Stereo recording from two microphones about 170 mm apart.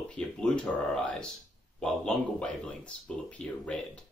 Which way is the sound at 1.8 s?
5° left (ahead or behind).